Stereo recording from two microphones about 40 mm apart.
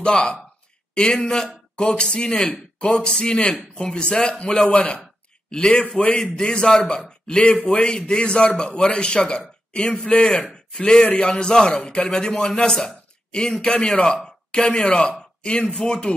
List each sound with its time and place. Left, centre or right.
0.0 s a man's voice: left